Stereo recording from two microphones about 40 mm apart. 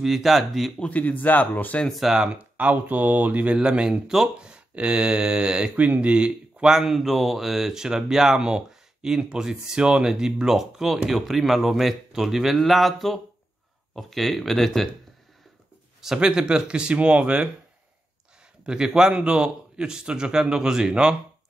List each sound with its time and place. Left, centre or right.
0.0 s speech: centre
0.8 s speech: left
2.3 s speech: right
3.5 s speech: right
5.8 s speech: right
6.7 s speech: centre; by 10.1 s right
10.1 s speech: centre
16.2 s speech: right
18.7 s speech: centre